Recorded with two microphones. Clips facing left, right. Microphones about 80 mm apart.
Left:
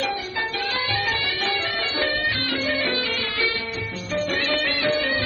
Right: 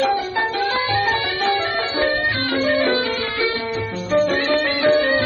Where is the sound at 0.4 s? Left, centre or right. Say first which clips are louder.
Right 6 dB; right.